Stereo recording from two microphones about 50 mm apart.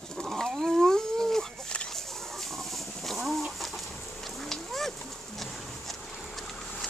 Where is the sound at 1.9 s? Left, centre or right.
Centre.